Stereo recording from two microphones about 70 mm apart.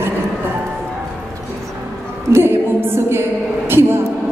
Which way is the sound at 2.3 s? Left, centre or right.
Right.